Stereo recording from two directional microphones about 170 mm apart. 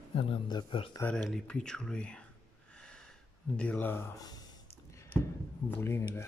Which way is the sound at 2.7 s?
5° left (ahead or behind).